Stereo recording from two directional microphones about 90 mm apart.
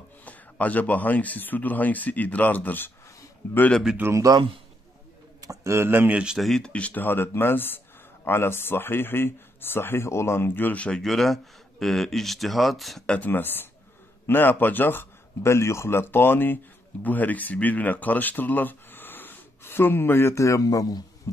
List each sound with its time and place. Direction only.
0.2 s speech: 15° left (ahead or behind)
4.1 s speech: 40° right (ahead or behind)
5.4 s speech: 35° right (ahead or behind); by 6.3 s 15° right (ahead or behind)
6.3 s speech: 5° left (ahead or behind)
6.7 s speech: 15° left (ahead or behind)
13.3 s speech: 20° left (ahead or behind); by 21.0 s 45° left (ahead or behind)